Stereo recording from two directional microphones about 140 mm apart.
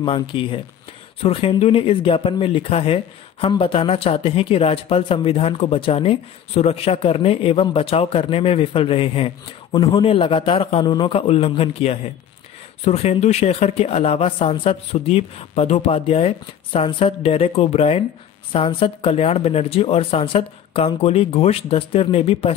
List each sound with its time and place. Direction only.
0.0 s speech: 35° left (ahead or behind)